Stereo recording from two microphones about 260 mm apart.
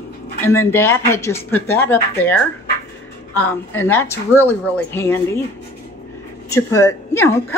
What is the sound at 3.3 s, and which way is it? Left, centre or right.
Speech, centre.